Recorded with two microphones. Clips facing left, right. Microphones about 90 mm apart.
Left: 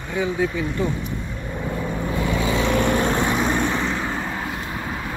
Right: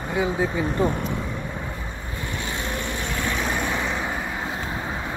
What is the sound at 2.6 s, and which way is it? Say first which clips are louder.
Vehicle: left 11 dB; 90° left.